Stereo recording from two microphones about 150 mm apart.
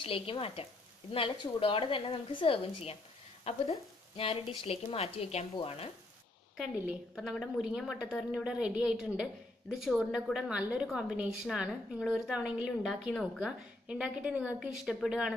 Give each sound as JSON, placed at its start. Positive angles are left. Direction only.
{"t": 0.0, "sound": "a woman's voice", "side_deg": 35}
{"t": 4.2, "sound": "a woman's voice", "side_deg": 40}
{"t": 7.2, "sound": "a woman's voice", "side_deg": 0}